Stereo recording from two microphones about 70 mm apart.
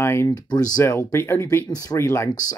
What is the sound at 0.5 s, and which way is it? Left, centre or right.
Speech, left.